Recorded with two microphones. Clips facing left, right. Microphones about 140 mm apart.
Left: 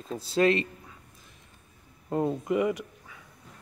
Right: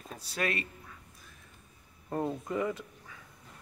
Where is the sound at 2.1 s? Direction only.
15° left (ahead or behind).